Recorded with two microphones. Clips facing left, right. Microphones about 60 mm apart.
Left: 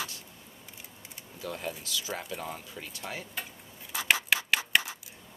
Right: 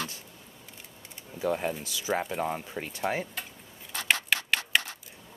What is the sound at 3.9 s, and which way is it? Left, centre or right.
Scratch, centre.